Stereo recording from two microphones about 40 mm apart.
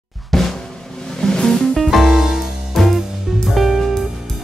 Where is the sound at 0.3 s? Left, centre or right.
Centre.